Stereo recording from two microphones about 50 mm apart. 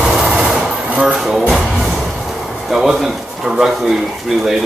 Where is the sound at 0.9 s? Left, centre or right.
Right.